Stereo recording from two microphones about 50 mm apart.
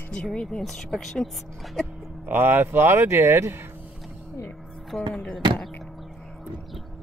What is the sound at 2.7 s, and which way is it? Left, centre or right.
Speech, right.